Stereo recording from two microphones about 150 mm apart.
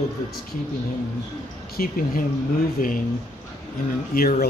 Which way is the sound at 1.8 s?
70° left (ahead or behind).